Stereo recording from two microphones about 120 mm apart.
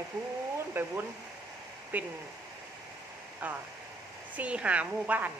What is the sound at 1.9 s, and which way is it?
Speech, 15° right (ahead or behind).